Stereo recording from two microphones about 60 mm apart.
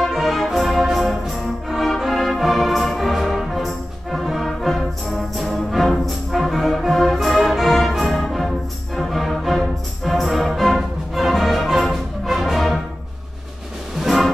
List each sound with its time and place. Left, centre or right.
0.0 s music: centre
13.9 s music: centre